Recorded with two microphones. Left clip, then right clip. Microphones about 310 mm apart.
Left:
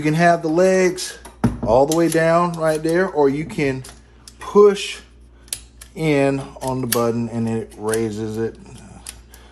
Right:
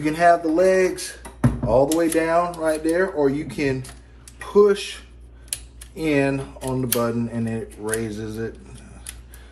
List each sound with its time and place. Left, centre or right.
0.0 s speech: left